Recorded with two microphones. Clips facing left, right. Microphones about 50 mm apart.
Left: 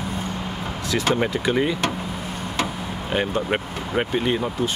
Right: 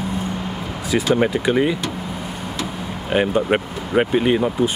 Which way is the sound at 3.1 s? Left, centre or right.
Centre.